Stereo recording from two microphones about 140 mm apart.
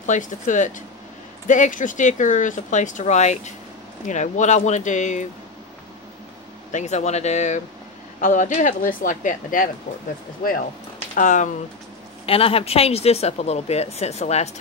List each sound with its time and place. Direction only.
0.0 s speech: 65° left (ahead or behind)
6.7 s speech: 55° left (ahead or behind)
10.4 s speech: 90° left
11.1 s speech: 65° left (ahead or behind)
12.3 s speech: 45° left (ahead or behind)